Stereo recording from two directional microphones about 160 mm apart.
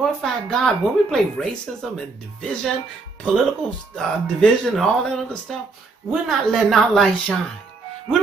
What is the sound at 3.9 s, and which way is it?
Speech, 5° left (ahead or behind).